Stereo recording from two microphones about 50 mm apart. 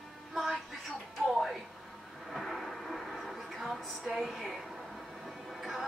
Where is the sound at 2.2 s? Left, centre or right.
Centre.